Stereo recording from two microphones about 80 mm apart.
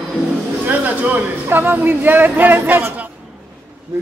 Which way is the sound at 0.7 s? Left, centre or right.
Right.